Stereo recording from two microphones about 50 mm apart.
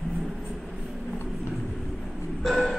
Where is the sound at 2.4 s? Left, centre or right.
Centre.